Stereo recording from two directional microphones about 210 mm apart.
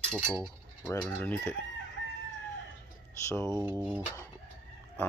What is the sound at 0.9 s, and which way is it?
Speech, 15° left (ahead or behind).